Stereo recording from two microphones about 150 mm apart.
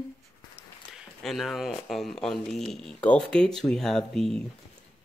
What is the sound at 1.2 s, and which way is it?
Speech, centre (ahead or behind).